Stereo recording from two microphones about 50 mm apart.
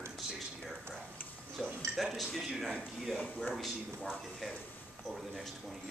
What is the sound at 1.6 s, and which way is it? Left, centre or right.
Speech, centre.